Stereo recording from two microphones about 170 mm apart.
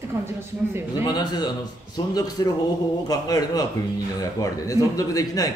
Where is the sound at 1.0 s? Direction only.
25° left (ahead or behind).